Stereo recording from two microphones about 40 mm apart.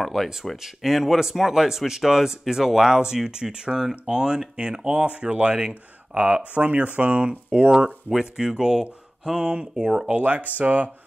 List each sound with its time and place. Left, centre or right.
0.0 s speech: centre; by 5.8 s right
6.1 s speech: right
10.1 s speech: right